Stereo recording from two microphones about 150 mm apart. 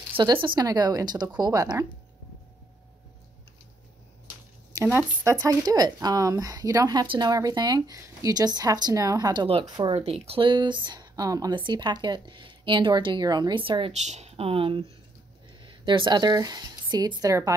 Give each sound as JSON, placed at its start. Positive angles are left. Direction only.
{"t": 0.2, "sound": "speech", "side_deg": -30}
{"t": 4.7, "sound": "speech", "side_deg": -15}
{"t": 14.0, "sound": "speech", "side_deg": -45}